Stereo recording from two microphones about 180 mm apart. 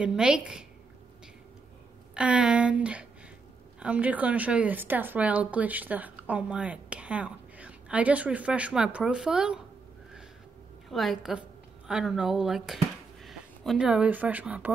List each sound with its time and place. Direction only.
0.0 s speech: 5° right (ahead or behind)
2.1 s a woman's voice: 5° right (ahead or behind)
10.9 s speech: centre (ahead or behind)